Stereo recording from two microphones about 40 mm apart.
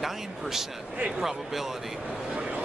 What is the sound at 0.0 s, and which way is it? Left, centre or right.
Speech, centre.